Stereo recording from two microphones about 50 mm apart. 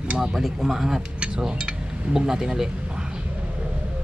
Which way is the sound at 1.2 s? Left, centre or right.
Centre.